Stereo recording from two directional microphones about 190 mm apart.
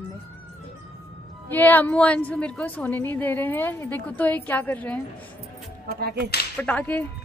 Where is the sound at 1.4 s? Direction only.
10° left (ahead or behind).